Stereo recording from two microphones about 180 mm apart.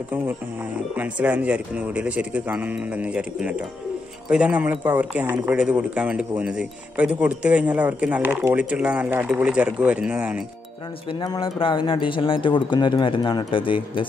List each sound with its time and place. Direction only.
0.9 s speech: 10° right (ahead or behind)
11.1 s speech: 25° left (ahead or behind)